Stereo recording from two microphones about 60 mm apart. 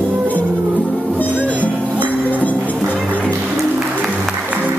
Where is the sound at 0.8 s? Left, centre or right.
Left.